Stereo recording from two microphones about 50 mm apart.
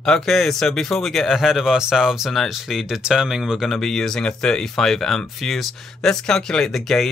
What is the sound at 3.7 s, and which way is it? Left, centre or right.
Speech, centre.